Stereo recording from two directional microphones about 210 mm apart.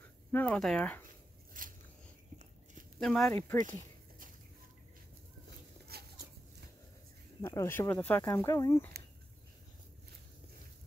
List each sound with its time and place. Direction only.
0.3 s speech: 5° left (ahead or behind)
1.6 s biting: 40° right (ahead or behind)
3.0 s speech: centre (ahead or behind)
3.6 s a sound: 40° right (ahead or behind)
5.9 s a sound: 45° right (ahead or behind)
7.4 s speech: 10° left (ahead or behind)